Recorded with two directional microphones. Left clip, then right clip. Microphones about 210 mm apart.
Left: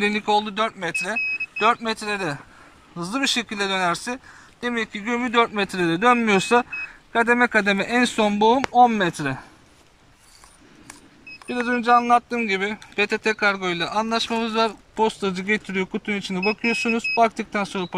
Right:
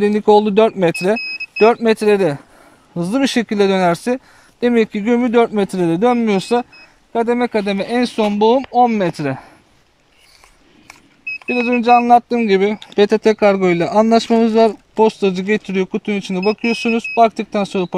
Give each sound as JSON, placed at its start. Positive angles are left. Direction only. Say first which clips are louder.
{"t": 0.0, "sound": "speech", "louder": "right 9 dB", "side_deg": -30}
{"t": 11.4, "sound": "speech", "louder": "right 7 dB", "side_deg": -20}